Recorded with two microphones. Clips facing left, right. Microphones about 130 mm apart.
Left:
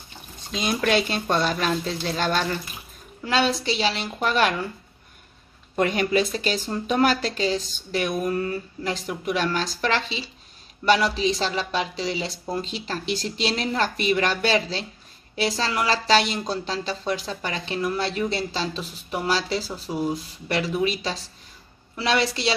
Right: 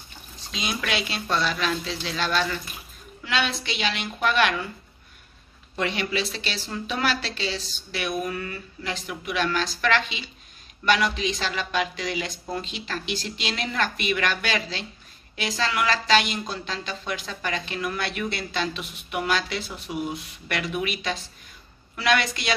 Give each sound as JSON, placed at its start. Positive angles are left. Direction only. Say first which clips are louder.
{"t": 0.5, "sound": "a woman's voice", "louder": "left 6 dB", "side_deg": 45}
{"t": 5.8, "sound": "a woman's voice", "louder": "left 6 dB", "side_deg": 45}